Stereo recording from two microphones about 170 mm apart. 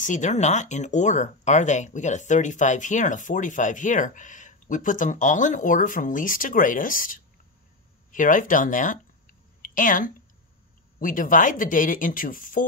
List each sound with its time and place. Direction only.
0.0 s speech: 45° left (ahead or behind)